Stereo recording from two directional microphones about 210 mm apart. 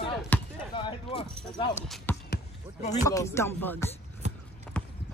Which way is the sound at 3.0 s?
15° left (ahead or behind).